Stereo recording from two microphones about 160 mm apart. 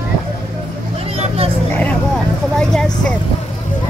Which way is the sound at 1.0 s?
40° right (ahead or behind).